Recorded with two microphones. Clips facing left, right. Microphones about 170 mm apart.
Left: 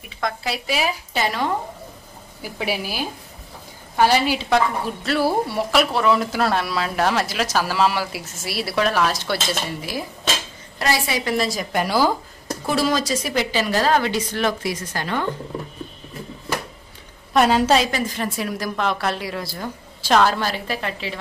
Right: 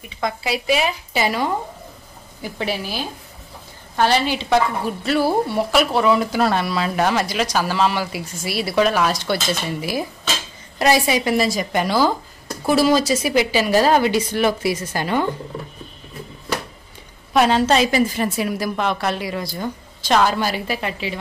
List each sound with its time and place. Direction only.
0.2 s speech: centre (ahead or behind)
2.4 s a woman's voice: 10° left (ahead or behind)
10.8 s speech: 15° right (ahead or behind)
11.3 s speech: centre (ahead or behind)
12.6 s speech: 5° right (ahead or behind)
17.3 s a woman's voice: centre (ahead or behind)
17.9 s speech: 10° right (ahead or behind)